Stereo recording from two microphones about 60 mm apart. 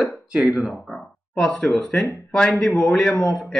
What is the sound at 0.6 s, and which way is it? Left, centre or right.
Speech, centre.